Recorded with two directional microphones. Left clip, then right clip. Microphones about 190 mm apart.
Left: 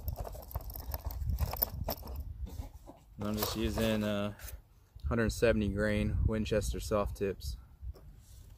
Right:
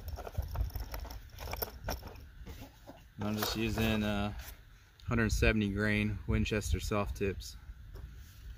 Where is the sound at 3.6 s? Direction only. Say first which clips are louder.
Left 1 dB; 20° right (ahead or behind).